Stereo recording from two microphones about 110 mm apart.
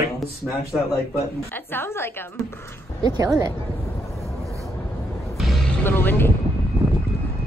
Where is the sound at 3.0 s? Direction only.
40° right (ahead or behind).